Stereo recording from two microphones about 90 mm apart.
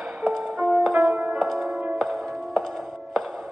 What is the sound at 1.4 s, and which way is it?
Music, centre (ahead or behind).